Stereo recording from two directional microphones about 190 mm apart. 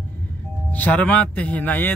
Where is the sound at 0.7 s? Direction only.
10° left (ahead or behind).